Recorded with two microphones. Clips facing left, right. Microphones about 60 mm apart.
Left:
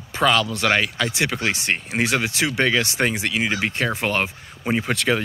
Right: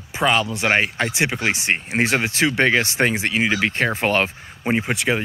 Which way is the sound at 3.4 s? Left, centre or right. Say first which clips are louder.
Right 3 dB; right.